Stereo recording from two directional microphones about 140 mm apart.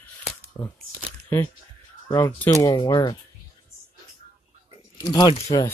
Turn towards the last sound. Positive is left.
turn(degrees=30)  # may be behind; listen again after turning